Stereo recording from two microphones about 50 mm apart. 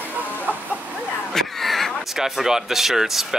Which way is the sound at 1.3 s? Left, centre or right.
Centre.